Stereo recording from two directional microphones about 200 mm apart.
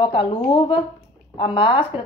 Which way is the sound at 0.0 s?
25° left (ahead or behind).